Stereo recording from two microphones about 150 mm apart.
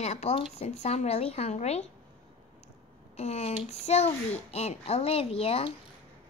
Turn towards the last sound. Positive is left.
turn(degrees=40)  # may be behind; listen again after turning